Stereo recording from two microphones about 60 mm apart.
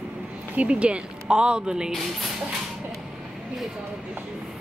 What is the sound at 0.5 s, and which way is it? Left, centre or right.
Speech, right.